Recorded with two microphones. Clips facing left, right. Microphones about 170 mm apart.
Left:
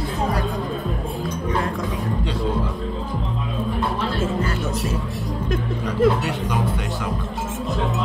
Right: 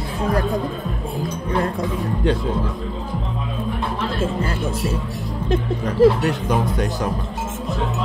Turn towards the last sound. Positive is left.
turn(degrees=-45)  # may be behind; listen again after turning